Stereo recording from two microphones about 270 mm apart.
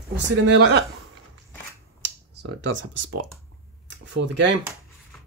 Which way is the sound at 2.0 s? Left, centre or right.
Right.